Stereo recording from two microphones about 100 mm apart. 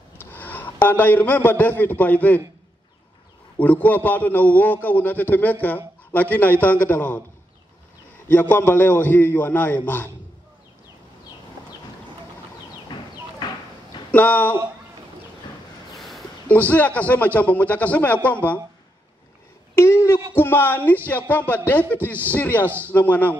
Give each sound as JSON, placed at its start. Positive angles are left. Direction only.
{"t": 0.2, "sound": "a man's voice", "side_deg": 20}
{"t": 3.5, "sound": "a man's voice", "side_deg": 15}
{"t": 8.3, "sound": "a man's voice", "side_deg": 20}
{"t": 12.9, "sound": "a sound", "side_deg": 45}
{"t": 14.1, "sound": "a man's voice", "side_deg": 15}
{"t": 16.4, "sound": "a man's voice", "side_deg": 15}
{"t": 19.7, "sound": "a sound", "side_deg": 25}
{"t": 20.3, "sound": "a man's voice", "side_deg": 20}